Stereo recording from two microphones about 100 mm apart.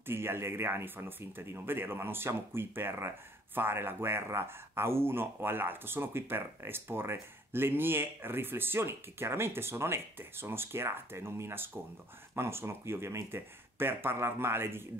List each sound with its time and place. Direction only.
0.0 s speech: 25° right (ahead or behind)